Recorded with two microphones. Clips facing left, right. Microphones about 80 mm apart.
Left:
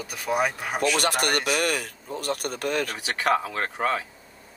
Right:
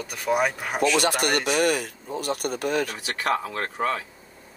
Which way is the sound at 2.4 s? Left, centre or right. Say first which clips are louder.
Right 3 dB; left.